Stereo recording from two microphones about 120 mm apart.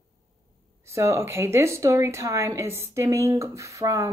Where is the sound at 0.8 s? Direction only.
25° right (ahead or behind).